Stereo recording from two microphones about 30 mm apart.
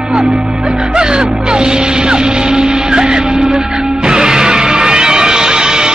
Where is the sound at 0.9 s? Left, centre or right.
Right.